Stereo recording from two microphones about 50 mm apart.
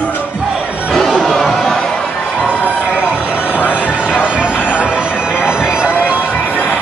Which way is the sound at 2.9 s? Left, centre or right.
Right.